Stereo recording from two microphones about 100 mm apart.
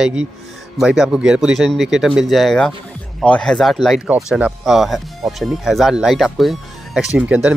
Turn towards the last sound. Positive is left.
turn(degrees=-10)  # may be behind; listen again after turning